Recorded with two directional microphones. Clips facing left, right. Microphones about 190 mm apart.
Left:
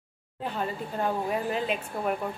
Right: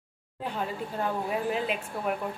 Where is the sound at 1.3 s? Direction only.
5° right (ahead or behind).